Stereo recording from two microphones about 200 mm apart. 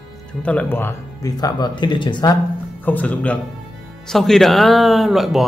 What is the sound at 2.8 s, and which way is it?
Speech, 10° left (ahead or behind).